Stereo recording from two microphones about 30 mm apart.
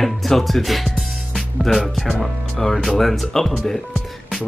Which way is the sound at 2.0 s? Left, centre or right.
Centre.